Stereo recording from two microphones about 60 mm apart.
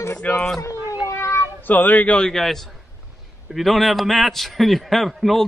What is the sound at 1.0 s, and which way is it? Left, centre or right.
Cat, left.